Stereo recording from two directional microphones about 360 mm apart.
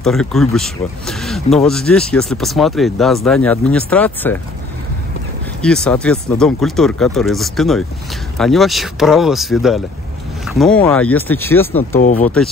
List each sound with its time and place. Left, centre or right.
0.0 s speech: centre
5.6 s speech: centre
12.0 s speech: left